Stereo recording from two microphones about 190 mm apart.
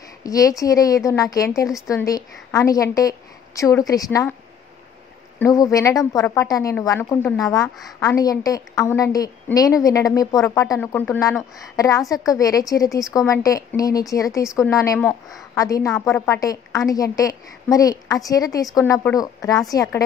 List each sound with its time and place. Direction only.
0.2 s a woman's voice: 20° left (ahead or behind)
5.4 s a woman's voice: 20° left (ahead or behind)